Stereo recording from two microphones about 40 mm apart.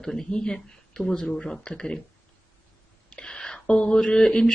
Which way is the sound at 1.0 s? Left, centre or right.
Centre.